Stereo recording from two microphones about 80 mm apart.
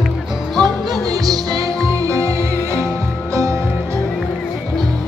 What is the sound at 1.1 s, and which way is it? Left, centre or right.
Music, right.